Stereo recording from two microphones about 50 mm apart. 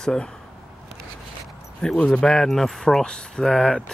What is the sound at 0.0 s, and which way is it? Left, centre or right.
Speech, centre.